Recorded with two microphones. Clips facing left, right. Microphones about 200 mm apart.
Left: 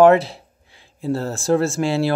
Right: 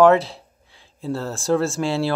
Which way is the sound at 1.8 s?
5° left (ahead or behind).